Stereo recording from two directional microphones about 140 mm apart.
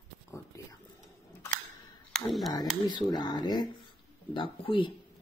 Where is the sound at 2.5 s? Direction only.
30° left (ahead or behind).